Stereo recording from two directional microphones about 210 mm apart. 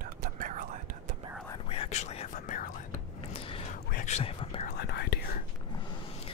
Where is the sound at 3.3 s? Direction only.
25° left (ahead or behind).